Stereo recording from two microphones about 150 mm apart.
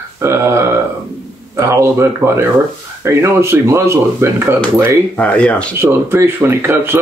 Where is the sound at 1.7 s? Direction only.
20° right (ahead or behind).